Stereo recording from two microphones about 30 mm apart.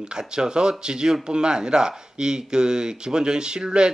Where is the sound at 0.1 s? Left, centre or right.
Right.